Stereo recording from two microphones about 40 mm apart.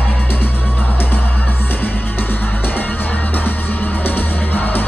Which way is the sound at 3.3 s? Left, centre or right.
Left.